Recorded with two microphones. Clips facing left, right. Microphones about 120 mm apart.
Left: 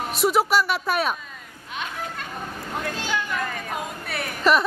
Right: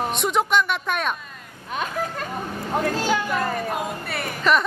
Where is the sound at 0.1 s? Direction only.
5° left (ahead or behind).